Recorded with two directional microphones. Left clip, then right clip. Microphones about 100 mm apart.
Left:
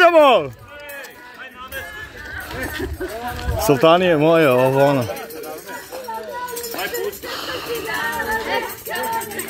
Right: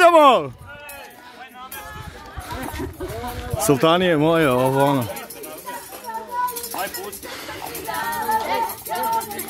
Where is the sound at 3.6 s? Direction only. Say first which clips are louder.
Left 3 dB; 50° right (ahead or behind); by 5.1 s 30° right (ahead or behind).